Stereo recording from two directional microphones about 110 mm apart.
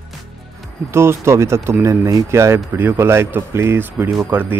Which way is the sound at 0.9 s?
25° right (ahead or behind).